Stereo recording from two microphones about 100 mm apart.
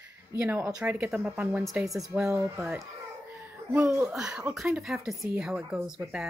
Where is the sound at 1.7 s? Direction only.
35° right (ahead or behind).